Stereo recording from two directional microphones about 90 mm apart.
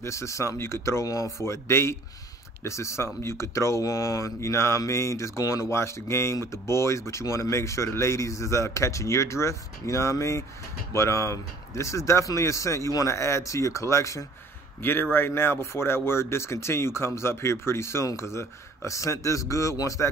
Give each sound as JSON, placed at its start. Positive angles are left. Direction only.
{"t": 0.0, "sound": "speech", "side_deg": 35}
{"t": 14.8, "sound": "speech", "side_deg": 25}